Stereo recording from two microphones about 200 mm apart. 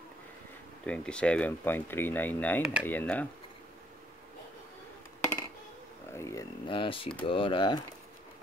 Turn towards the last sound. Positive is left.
turn(degrees=20)  # may be behind; listen again after turning